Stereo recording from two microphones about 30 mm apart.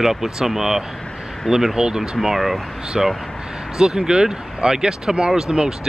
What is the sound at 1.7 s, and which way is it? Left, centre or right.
Speech, right.